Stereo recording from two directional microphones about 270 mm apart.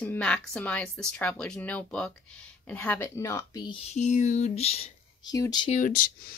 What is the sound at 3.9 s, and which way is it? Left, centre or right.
Speech, left.